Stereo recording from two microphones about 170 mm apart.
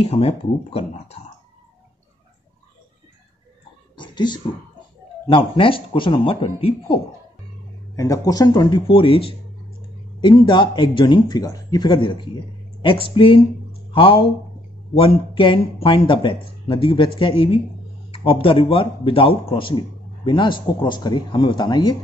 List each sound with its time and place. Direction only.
0.0 s speech: 40° left (ahead or behind)
3.9 s a sound: 25° left (ahead or behind)
5.2 s speech: 30° left (ahead or behind)
7.9 s speech: 20° left (ahead or behind)
10.2 s speech: 25° left (ahead or behind)